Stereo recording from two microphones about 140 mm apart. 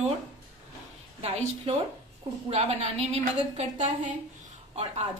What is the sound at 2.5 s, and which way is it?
A woman's voice, 50° right (ahead or behind).